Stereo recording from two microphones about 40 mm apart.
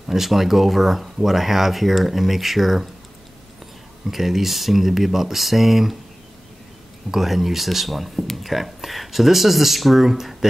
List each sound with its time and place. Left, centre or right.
0.1 s speech: centre
4.1 s speech: centre
7.1 s speech: centre